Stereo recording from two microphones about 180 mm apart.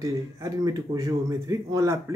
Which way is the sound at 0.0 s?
20° right (ahead or behind).